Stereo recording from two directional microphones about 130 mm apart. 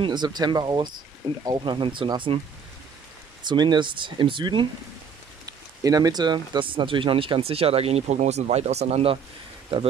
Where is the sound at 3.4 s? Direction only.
35° right (ahead or behind).